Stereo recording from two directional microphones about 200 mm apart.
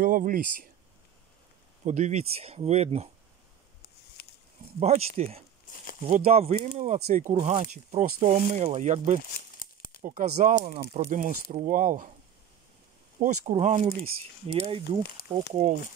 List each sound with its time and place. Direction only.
0.0 s speech: 40° right (ahead or behind)
1.9 s speech: 35° right (ahead or behind)
4.2 s a sound: 50° left (ahead or behind)
4.7 s speech: 35° right (ahead or behind)
9.6 s crumpling: 45° left (ahead or behind)
10.0 s speech: 40° right (ahead or behind)
13.2 s speech: 35° right (ahead or behind)
14.5 s speech: 25° right (ahead or behind)
15.2 s speech: 50° left (ahead or behind)